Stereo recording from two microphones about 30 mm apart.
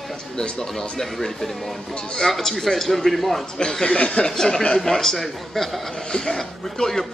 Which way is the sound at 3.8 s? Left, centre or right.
Left.